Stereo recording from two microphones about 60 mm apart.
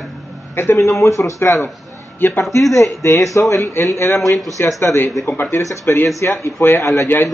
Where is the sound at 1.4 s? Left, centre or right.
Left.